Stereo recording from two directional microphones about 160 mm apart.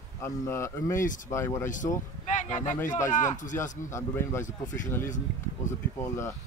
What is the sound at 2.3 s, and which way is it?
Speech, 50° left (ahead or behind).